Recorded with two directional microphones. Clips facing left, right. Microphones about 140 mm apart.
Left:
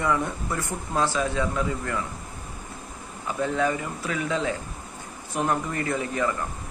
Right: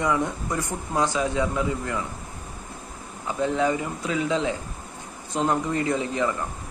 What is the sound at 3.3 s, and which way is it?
Speech, 20° right (ahead or behind).